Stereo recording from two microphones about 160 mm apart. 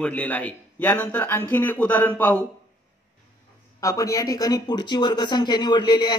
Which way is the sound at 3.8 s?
20° left (ahead or behind).